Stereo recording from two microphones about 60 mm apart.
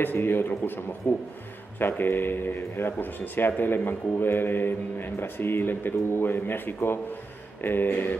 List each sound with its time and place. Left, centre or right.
0.0 s speech: left